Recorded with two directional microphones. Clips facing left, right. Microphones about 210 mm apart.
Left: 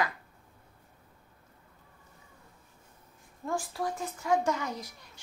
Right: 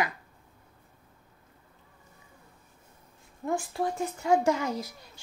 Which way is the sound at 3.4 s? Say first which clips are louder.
Right 3 dB; 25° right (ahead or behind).